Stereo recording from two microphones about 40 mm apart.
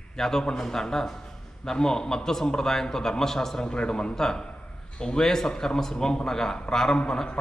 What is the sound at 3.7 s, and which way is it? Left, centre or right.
Speech, left.